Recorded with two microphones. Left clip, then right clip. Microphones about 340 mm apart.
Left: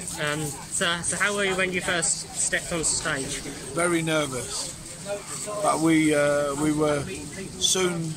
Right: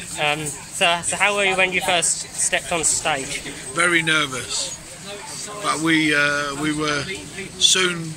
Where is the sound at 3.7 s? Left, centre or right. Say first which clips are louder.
Right 6 dB; centre.